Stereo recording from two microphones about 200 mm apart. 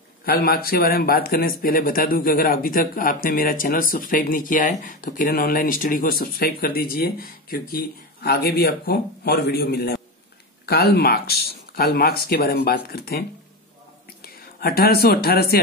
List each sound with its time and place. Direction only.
0.2 s speech: 50° left (ahead or behind)
14.2 s speech: 50° left (ahead or behind)